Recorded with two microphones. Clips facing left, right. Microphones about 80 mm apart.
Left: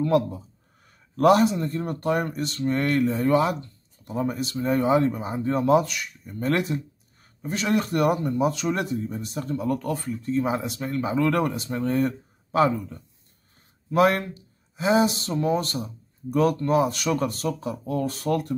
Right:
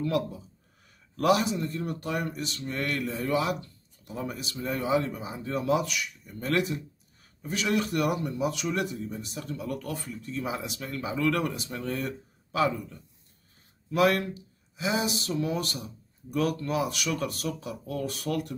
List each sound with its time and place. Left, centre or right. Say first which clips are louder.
0.0 s speech: left 7 dB; left